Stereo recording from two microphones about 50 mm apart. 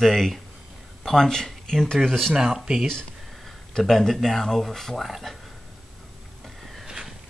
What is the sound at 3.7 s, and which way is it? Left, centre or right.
Speech, centre.